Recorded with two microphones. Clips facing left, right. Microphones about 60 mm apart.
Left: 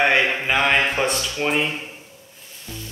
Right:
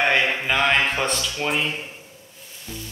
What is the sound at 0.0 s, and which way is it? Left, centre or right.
Speech, centre.